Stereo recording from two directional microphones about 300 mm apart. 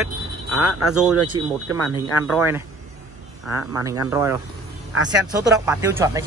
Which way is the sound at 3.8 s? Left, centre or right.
Centre.